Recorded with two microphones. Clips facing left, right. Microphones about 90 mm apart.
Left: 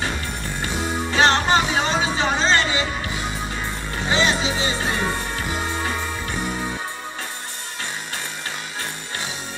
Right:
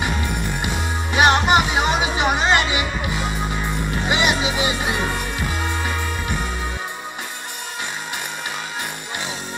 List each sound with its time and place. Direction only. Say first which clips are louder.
1.1 s music: right 2 dB; 15° right (ahead or behind)